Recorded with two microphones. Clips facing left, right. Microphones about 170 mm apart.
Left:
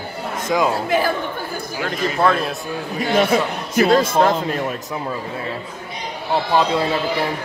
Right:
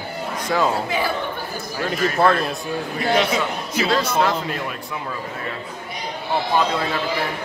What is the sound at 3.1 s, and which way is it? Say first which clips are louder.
A man's voice: left 3 dB; 50° left (ahead or behind).